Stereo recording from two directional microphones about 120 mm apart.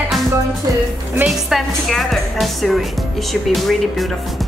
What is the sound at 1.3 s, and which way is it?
Speech, centre (ahead or behind).